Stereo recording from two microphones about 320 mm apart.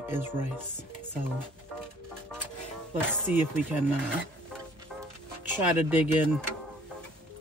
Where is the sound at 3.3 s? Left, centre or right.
Centre.